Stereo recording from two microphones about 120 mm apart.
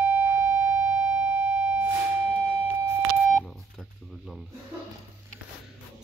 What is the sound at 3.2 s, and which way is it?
Telephone dialing, centre (ahead or behind).